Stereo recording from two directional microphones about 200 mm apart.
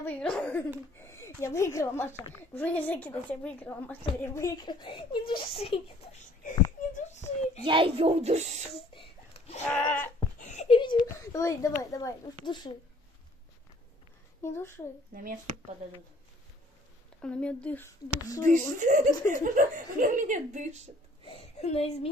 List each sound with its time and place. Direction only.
0.0 s a woman's voice: 5° left (ahead or behind); by 7.6 s 35° left (ahead or behind)
7.6 s speech: 25° right (ahead or behind)
8.7 s a sound: 30° left (ahead or behind)
9.7 s a woman's voice: 10° left (ahead or behind)
10.4 s a sound: 35° left (ahead or behind)
11.1 s a woman's voice: 15° left (ahead or behind)
14.4 s a woman's voice: 10° left (ahead or behind)
15.1 s speech: 45° right (ahead or behind)
17.2 s a woman's voice: 5° left (ahead or behind)
18.4 s speech: 40° right (ahead or behind)
21.3 s a woman's voice: 30° left (ahead or behind)